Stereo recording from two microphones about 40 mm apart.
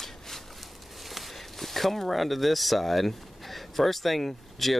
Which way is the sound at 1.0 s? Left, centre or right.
Centre.